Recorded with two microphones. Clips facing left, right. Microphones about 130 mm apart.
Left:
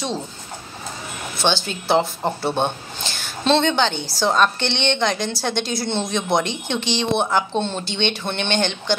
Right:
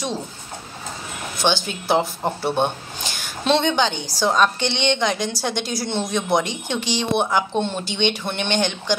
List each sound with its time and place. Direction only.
1.4 s speech: 15° right (ahead or behind)